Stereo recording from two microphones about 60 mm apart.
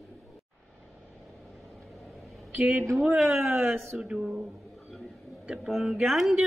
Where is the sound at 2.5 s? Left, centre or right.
Right.